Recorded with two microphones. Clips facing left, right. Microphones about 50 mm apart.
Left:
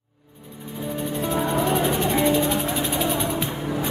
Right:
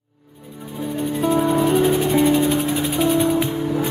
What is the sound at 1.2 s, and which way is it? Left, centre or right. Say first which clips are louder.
Music: right 6 dB; centre.